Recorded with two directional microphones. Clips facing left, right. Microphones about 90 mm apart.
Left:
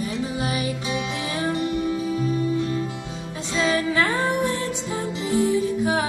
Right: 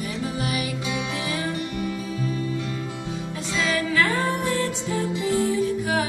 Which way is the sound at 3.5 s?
30° left (ahead or behind).